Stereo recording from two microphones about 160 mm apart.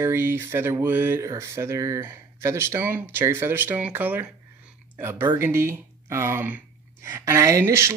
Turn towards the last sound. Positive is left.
turn(degrees=-15)  # may be behind; listen again after turning